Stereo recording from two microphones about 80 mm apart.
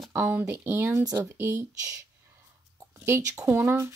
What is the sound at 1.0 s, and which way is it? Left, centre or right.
Speech, right.